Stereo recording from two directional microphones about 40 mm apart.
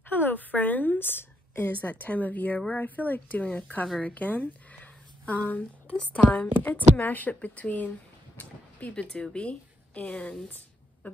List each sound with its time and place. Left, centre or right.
0.1 s a woman's voice: left
9.1 s speech: left